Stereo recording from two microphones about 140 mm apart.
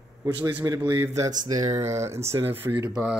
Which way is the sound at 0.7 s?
15° right (ahead or behind).